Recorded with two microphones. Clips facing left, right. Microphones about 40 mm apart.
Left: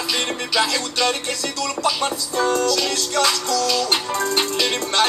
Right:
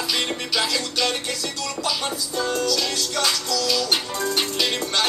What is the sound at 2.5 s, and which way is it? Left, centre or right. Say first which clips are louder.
Music: left 4 dB; left.